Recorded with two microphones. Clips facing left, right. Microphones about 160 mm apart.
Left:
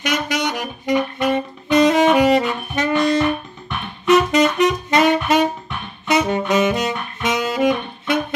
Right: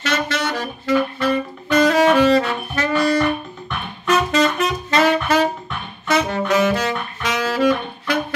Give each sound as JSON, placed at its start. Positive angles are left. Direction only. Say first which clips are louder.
{"t": 0.0, "sound": "saxophone", "louder": "left 1 dB", "side_deg": 15}